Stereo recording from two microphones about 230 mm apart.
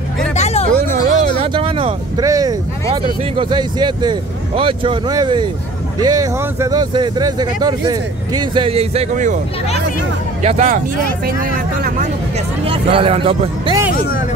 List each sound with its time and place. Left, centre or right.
0.3 s hubbub: left
0.7 s speech: right
10.4 s speech: right
12.6 s speech: right